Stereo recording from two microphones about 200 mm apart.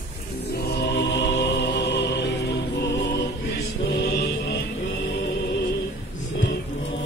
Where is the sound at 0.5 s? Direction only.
55° left (ahead or behind).